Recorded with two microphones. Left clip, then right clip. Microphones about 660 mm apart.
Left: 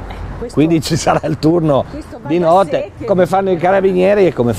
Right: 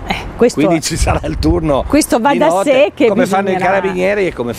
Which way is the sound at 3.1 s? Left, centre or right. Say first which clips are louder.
Even; left.